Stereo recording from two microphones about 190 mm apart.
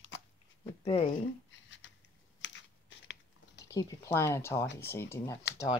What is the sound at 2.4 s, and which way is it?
Biting, 70° left (ahead or behind).